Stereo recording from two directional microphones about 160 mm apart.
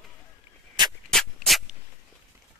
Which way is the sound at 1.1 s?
Centre (ahead or behind).